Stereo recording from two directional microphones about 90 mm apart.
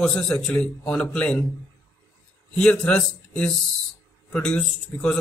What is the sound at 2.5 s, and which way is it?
A man's voice, 10° left (ahead or behind).